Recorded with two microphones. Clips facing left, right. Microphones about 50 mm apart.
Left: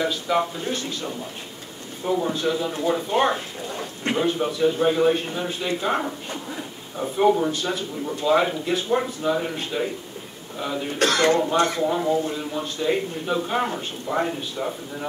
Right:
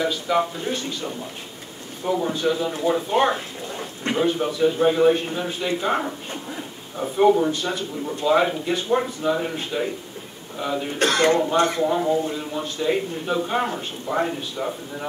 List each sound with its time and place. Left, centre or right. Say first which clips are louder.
0.0 s a man's voice: right 1 dB; centre
11.0 s speech: even; right
11.8 s a man's voice: right 1 dB; centre